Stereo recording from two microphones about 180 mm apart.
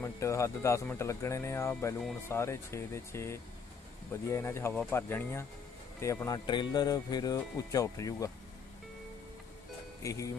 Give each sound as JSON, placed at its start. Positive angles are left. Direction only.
{"t": 0.0, "sound": "speech", "side_deg": 15}
{"t": 10.0, "sound": "speech", "side_deg": 15}